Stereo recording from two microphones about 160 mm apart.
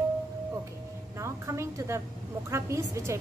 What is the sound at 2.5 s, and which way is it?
Speech, 15° right (ahead or behind).